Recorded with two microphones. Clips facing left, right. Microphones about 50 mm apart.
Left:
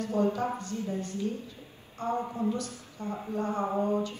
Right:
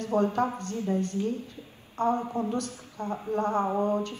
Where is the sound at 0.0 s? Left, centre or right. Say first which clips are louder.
Right 3 dB; right.